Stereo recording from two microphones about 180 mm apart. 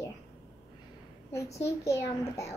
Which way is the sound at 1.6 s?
15° left (ahead or behind).